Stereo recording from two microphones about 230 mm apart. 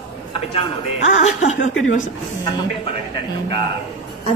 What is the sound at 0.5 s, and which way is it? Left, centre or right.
Speech, left.